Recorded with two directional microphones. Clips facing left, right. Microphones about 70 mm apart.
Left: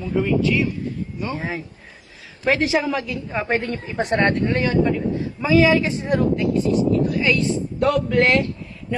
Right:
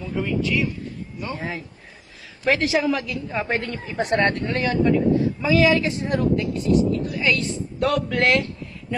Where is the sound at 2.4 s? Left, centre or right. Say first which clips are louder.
Left 1 dB; left.